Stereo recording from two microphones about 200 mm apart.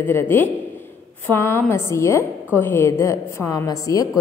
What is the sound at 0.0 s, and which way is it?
A woman's voice, 10° left (ahead or behind).